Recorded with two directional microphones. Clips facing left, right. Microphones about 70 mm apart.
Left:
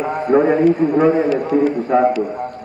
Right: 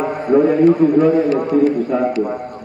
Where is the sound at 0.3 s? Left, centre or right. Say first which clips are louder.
Right 1 dB; left.